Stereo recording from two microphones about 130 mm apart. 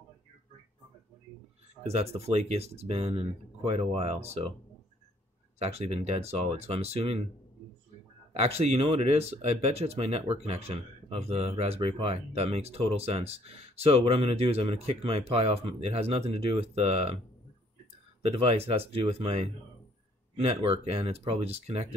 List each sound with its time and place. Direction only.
1.8 s speech: 55° right (ahead or behind)
5.6 s speech: 55° right (ahead or behind)
8.3 s speech: 55° right (ahead or behind)
18.2 s speech: 45° right (ahead or behind)
20.3 s speech: 50° right (ahead or behind)